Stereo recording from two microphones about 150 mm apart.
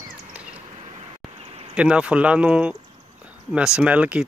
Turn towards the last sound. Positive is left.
turn(degrees=-10)  # may be behind; listen again after turning